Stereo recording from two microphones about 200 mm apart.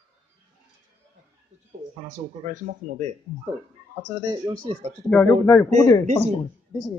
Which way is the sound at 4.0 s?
20° right (ahead or behind).